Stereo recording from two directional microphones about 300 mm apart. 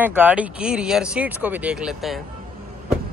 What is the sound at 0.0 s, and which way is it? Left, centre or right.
Speech, centre.